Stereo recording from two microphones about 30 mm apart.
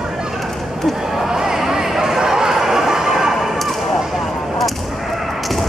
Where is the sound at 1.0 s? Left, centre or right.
Centre.